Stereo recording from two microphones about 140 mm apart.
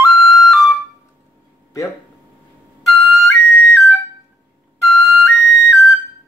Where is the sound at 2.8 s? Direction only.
Centre (ahead or behind).